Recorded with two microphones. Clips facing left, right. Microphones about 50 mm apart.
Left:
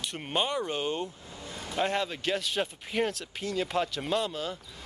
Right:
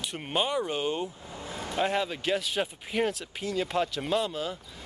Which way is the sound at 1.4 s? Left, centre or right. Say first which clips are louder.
Right 3 dB; centre.